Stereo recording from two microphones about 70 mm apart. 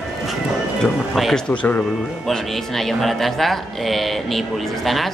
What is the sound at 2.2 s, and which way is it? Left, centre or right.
Speech, centre.